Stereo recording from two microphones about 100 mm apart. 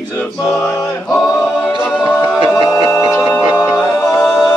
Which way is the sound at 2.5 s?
35° left (ahead or behind).